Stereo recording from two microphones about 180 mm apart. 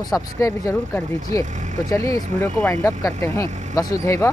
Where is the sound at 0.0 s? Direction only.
20° left (ahead or behind).